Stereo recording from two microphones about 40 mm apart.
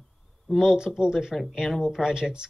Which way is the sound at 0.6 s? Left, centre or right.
Centre.